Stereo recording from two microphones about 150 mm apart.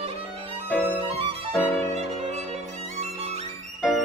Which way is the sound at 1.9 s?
45° right (ahead or behind).